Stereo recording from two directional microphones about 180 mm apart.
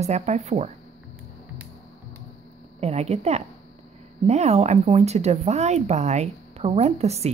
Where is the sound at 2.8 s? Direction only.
35° right (ahead or behind).